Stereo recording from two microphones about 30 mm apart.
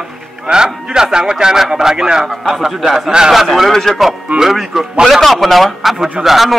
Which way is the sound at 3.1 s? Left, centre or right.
Right.